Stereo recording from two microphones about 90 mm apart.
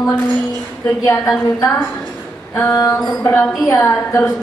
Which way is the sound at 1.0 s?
35° left (ahead or behind).